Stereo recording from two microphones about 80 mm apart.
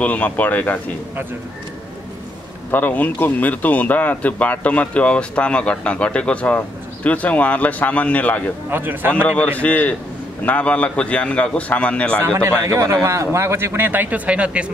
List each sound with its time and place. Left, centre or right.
0.0 s speech: centre
2.7 s speech: left
8.6 s a man's voice: right
9.1 s speech: centre
12.4 s a man's voice: right; by 14.7 s centre